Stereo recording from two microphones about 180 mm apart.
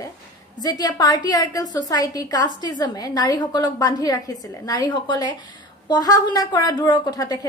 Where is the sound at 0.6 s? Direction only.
20° left (ahead or behind).